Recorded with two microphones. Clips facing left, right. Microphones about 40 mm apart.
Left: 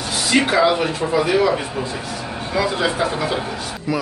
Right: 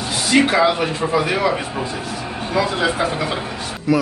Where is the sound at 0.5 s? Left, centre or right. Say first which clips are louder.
Even; centre.